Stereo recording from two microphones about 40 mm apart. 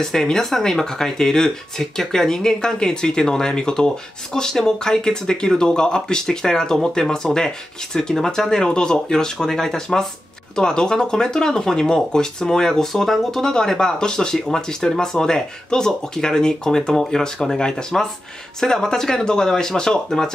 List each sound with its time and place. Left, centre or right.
0.0 s speech: centre